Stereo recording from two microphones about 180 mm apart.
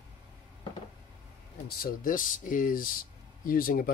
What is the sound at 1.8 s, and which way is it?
Speech, 50° left (ahead or behind).